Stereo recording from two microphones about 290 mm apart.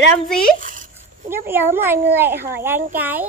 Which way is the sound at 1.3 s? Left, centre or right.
Centre.